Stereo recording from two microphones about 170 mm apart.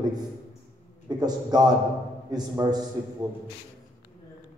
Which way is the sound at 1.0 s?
25° right (ahead or behind).